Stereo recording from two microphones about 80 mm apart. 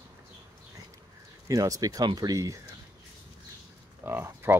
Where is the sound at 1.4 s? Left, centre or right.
Right.